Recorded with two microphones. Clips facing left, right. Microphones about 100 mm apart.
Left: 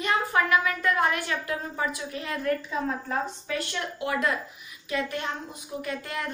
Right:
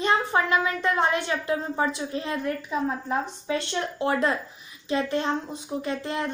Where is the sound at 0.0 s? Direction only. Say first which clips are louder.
Right 2 dB; 25° right (ahead or behind).